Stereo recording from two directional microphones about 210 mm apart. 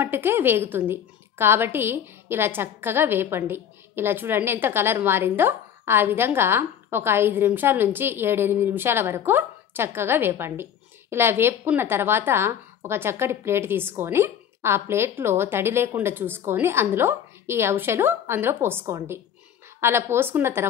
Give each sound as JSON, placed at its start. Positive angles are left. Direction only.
{"t": 0.0, "sound": "a woman's voice", "side_deg": -10}